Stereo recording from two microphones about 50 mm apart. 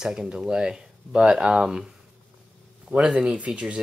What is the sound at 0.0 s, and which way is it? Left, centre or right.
Speech, centre.